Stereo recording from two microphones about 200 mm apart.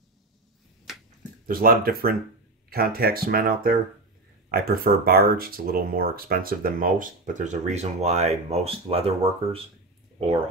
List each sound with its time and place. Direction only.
1.5 s speech: 45° right (ahead or behind); by 9.7 s 30° right (ahead or behind)